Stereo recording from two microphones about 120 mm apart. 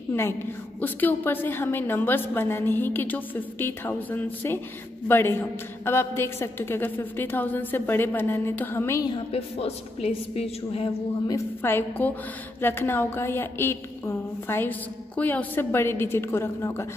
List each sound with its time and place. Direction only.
0.1 s a woman's voice: 20° left (ahead or behind)
9.3 s a woman's voice: 55° left (ahead or behind)
11.2 s a woman's voice: 20° left (ahead or behind)